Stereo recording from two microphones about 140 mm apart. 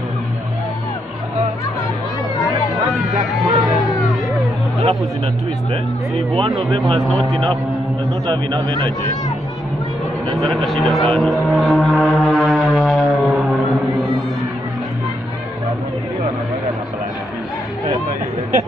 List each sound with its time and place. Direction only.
2.9 s music: centre (ahead or behind)
6.1 s a man's voice: 40° right (ahead or behind)
7.0 s a man's voice: centre (ahead or behind)
8.3 s a man's voice: 35° right (ahead or behind)
10.3 s a sound: centre (ahead or behind)